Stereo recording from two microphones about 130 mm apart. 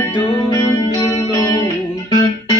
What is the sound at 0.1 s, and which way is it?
Music, 35° left (ahead or behind).